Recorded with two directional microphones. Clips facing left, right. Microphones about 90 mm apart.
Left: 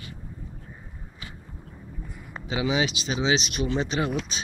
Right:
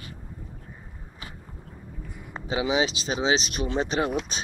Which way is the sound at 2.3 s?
30° right (ahead or behind).